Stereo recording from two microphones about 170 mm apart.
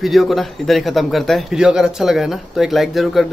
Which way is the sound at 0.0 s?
Centre (ahead or behind).